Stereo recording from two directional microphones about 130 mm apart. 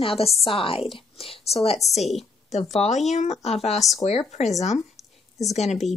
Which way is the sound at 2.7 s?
60° left (ahead or behind).